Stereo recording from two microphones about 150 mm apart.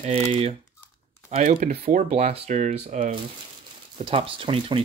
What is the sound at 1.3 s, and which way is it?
Speech, 55° right (ahead or behind).